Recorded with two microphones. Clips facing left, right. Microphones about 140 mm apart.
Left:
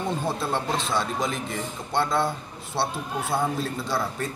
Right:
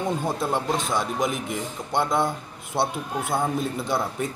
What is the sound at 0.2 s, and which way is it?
Speech, 15° right (ahead or behind).